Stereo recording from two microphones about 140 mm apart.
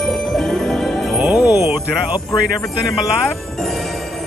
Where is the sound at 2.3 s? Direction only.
25° left (ahead or behind).